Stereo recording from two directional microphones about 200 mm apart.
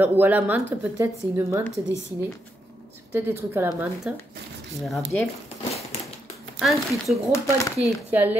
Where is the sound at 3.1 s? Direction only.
10° right (ahead or behind).